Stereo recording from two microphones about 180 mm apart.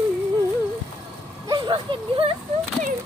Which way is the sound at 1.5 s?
30° right (ahead or behind).